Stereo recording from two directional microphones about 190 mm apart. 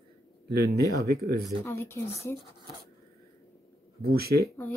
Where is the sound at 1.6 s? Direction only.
15° left (ahead or behind).